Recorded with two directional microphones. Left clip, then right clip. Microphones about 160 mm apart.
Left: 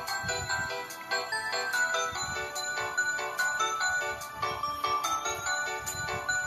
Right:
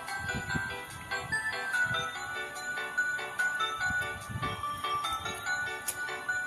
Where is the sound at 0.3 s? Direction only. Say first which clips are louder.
Left 2 dB; 45° left (ahead or behind).